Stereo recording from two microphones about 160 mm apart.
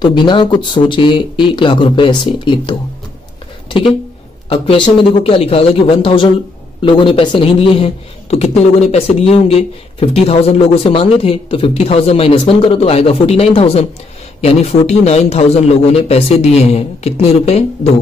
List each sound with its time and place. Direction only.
0.0 s a man's voice: 30° left (ahead or behind)
3.6 s a sound: 35° left (ahead or behind)
4.5 s a man's voice: 30° left (ahead or behind)